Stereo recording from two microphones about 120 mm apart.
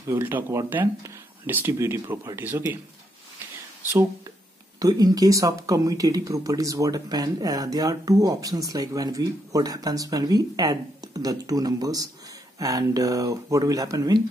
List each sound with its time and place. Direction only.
0.0 s speech: 20° right (ahead or behind)
4.7 s speech: 30° right (ahead or behind)